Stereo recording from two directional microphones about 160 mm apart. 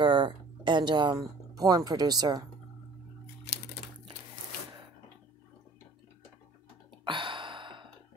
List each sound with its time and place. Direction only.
0.0 s speech: 30° right (ahead or behind)
7.1 s gasp: 30° right (ahead or behind)